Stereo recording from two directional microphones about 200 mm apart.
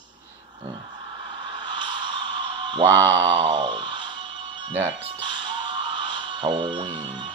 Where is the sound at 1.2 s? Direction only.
25° right (ahead or behind).